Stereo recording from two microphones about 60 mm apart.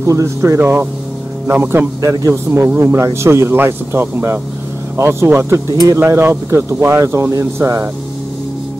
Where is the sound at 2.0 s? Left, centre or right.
Right.